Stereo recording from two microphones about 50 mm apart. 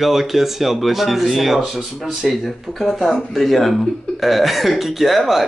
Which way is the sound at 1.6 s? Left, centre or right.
Centre.